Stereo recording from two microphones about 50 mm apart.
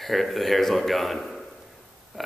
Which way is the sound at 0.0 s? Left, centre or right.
Centre.